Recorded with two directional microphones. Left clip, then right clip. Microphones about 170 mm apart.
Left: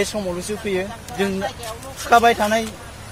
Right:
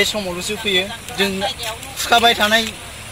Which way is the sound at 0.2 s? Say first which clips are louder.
Right 3 dB; 10° left (ahead or behind).